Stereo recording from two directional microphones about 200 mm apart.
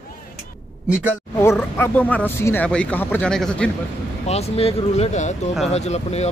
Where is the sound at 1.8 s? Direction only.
5° left (ahead or behind).